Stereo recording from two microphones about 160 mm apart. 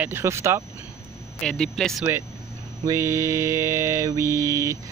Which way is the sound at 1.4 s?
5° left (ahead or behind).